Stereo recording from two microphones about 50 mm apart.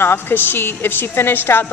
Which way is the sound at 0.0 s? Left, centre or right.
Left.